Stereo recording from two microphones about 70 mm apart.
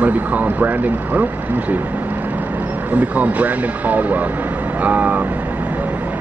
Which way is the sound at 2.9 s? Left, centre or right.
Right.